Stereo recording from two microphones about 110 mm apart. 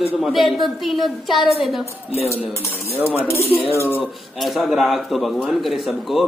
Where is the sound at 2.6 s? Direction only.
25° left (ahead or behind).